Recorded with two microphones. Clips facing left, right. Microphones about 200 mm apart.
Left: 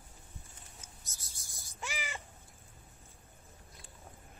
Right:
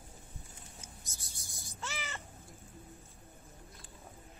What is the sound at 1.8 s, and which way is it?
Crow, 15° left (ahead or behind).